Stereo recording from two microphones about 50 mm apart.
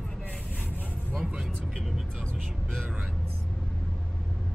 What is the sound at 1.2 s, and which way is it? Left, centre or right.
Speech, right.